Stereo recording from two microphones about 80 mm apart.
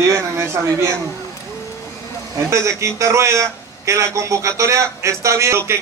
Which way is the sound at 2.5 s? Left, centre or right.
Right.